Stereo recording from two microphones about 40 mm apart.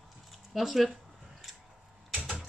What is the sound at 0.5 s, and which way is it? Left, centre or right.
Speech, centre.